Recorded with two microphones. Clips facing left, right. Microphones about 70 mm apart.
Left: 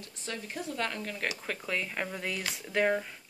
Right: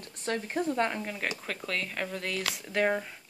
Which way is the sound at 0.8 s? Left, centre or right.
Right.